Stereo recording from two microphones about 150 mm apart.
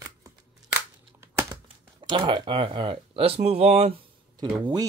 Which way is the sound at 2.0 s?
30° right (ahead or behind).